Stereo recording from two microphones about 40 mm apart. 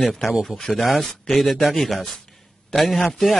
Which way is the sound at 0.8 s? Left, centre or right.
Centre.